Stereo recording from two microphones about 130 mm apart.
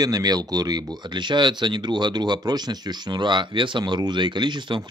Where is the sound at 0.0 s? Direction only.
30° right (ahead or behind).